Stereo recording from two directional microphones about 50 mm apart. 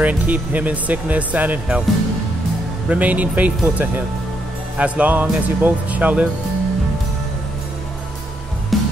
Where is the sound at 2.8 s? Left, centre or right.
Right.